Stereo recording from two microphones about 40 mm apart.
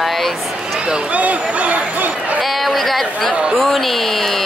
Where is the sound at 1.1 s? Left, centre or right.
Right.